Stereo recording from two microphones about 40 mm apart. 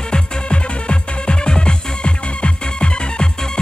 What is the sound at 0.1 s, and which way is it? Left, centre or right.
Music, left.